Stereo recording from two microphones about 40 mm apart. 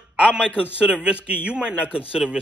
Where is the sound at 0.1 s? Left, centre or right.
Right.